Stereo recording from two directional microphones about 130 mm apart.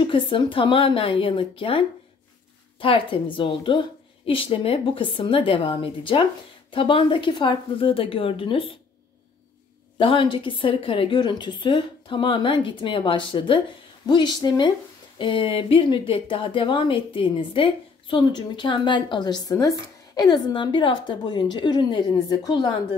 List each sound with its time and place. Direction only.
0.0 s a woman's voice: 40° left (ahead or behind)
9.9 s speech: 40° left (ahead or behind)